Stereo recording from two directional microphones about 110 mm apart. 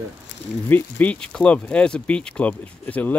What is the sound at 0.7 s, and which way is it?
Speech, 15° left (ahead or behind).